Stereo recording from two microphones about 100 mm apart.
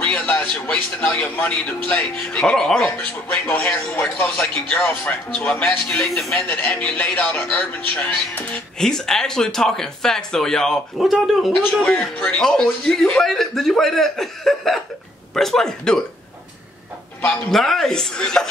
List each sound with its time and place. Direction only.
0.0 s speech: 15° left (ahead or behind)
4.6 s speech: 5° left (ahead or behind)
17.2 s speech: 15° left (ahead or behind)
17.5 s speech: 5° left (ahead or behind)